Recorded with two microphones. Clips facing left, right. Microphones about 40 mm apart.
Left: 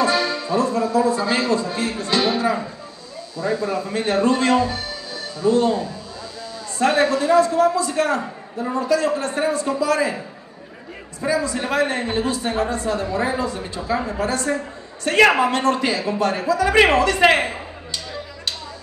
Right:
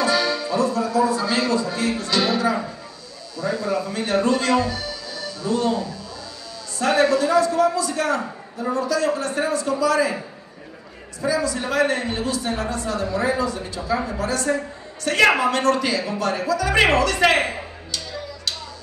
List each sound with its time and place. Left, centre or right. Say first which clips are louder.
0.0 s a man's voice: left 1 dB; left
11.1 s a man's voice: left 1 dB; left; by 14.0 s centre
14.0 s a man's voice: left 1 dB; left